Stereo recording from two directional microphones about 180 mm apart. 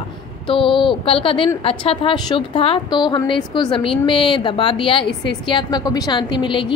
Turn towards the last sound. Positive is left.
turn(degrees=25)  # may be behind; listen again after turning